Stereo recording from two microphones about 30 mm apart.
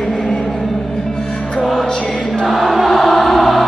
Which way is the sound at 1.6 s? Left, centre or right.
Centre.